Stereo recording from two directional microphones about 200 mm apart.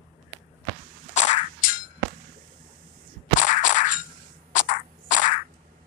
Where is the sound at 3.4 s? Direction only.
40° left (ahead or behind).